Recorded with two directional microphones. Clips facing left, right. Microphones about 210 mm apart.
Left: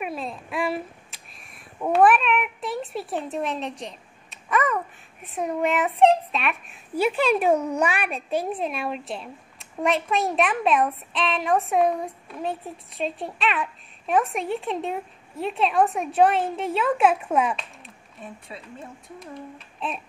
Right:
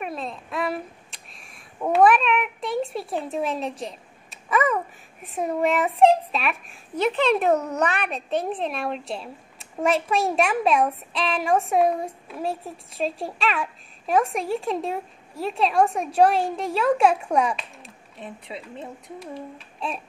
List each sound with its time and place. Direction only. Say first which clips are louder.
0.0 s a child's voice: even; 5° left (ahead or behind)
18.2 s speech: right 3 dB; 20° right (ahead or behind)